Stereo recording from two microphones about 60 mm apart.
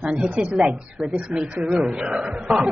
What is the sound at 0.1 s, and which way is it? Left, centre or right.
Speech, centre.